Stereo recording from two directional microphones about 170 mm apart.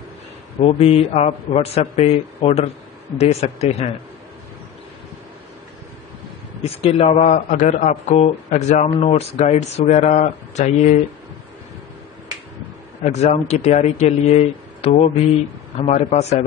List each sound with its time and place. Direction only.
0.6 s a man's voice: 35° left (ahead or behind)
6.6 s a man's voice: 35° left (ahead or behind)
13.0 s a man's voice: 40° left (ahead or behind)